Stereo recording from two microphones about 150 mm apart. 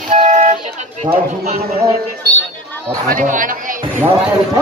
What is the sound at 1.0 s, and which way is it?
Speech, 40° right (ahead or behind).